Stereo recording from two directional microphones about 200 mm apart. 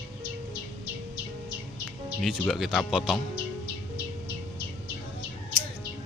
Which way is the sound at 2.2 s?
Centre (ahead or behind).